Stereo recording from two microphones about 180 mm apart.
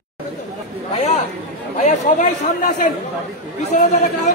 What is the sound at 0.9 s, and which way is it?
Chatter, 35° left (ahead or behind).